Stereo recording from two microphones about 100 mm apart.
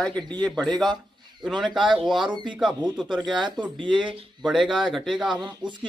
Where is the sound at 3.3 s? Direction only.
50° right (ahead or behind).